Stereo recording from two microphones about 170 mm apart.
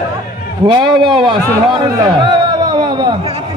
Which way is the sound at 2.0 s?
25° right (ahead or behind).